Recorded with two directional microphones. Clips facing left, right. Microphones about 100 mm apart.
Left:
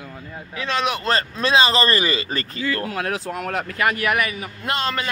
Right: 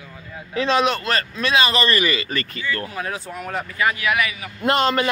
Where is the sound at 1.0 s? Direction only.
30° left (ahead or behind).